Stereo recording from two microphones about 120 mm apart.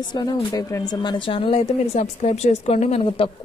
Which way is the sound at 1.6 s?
70° left (ahead or behind).